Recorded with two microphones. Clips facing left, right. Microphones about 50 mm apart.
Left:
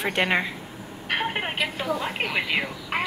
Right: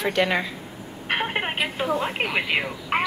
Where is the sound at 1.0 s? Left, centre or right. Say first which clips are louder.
Right 2 dB; centre.